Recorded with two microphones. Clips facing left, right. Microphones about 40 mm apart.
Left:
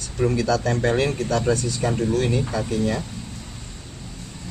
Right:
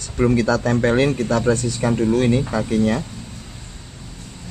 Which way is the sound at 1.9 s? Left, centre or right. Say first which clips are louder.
Right 5 dB; right.